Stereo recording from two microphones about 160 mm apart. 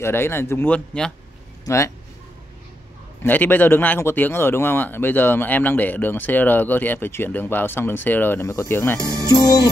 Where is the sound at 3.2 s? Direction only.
10° left (ahead or behind).